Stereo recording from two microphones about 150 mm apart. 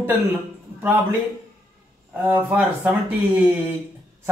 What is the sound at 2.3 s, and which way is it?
Speech, 10° right (ahead or behind).